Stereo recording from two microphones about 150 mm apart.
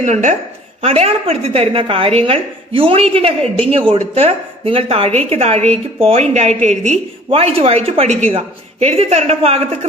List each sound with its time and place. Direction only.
0.0 s speech: 55° right (ahead or behind)
0.8 s a woman's voice: 45° right (ahead or behind)